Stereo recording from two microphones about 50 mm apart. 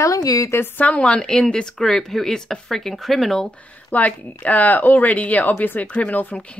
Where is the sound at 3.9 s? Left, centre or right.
Left.